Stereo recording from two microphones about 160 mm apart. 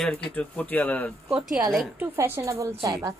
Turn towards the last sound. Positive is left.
turn(degrees=-20)  # may be behind; listen again after turning